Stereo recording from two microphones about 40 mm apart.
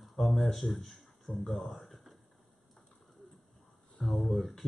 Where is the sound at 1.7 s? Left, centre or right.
Centre.